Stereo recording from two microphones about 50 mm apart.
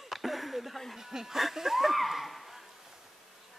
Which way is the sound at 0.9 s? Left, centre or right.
Centre.